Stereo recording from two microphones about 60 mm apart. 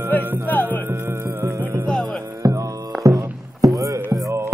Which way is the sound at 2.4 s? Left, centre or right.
Right.